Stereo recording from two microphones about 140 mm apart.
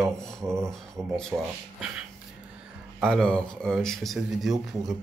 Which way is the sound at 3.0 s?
5° left (ahead or behind).